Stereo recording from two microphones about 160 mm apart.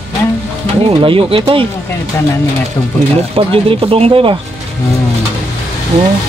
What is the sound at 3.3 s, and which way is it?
Speech, 35° right (ahead or behind).